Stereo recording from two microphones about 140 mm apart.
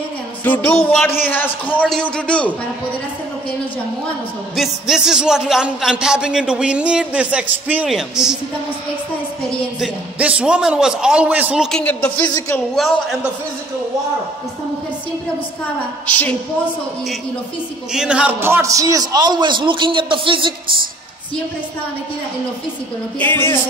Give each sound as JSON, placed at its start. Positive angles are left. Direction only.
{"t": 0.4, "sound": "a man's voice", "side_deg": 15}
{"t": 4.6, "sound": "a man's voice", "side_deg": -5}
{"t": 9.8, "sound": "a man's voice", "side_deg": -10}
{"t": 11.8, "sound": "a man's voice", "side_deg": 10}
{"t": 12.7, "sound": "a man's voice", "side_deg": 0}
{"t": 16.1, "sound": "a man's voice", "side_deg": 10}
{"t": 17.9, "sound": "a man's voice", "side_deg": -5}
{"t": 23.1, "sound": "a man's voice", "side_deg": 15}